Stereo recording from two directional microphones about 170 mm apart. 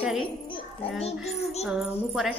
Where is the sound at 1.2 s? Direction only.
Centre (ahead or behind).